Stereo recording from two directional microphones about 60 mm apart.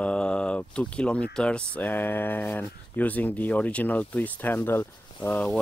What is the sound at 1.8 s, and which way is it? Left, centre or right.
Speech, left.